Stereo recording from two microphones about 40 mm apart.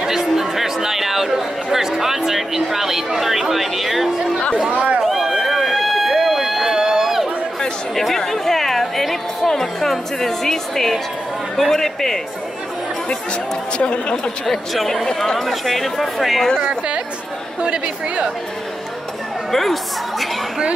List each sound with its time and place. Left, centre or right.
0.0 s a sound: centre
4.6 s run: right
5.0 s run: centre
8.3 s music: centre
9.5 s a woman's voice: centre
13.7 s a woman's voice: left
14.4 s speech: centre
16.6 s speech: right
17.6 s chatter: right
19.5 s speech: centre